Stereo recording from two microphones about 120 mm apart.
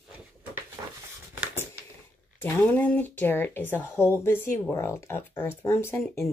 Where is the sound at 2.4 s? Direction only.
15° left (ahead or behind).